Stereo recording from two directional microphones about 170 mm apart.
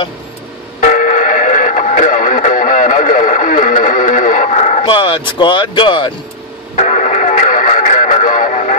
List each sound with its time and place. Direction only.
0.7 s radio: 45° left (ahead or behind)
4.8 s speech: 30° left (ahead or behind)
6.8 s music: 45° left (ahead or behind)